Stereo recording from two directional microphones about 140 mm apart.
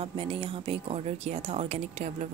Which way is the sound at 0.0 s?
40° right (ahead or behind).